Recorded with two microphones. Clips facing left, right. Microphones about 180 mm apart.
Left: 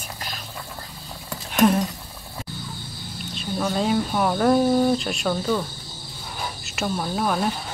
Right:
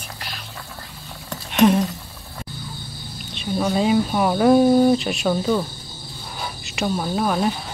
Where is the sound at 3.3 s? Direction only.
5° right (ahead or behind).